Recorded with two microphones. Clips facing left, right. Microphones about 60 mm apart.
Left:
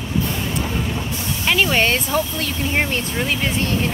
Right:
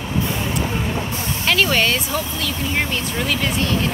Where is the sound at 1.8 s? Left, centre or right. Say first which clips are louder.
Left 2 dB; left.